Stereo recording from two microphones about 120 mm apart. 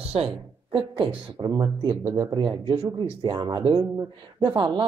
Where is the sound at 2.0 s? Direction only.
25° right (ahead or behind).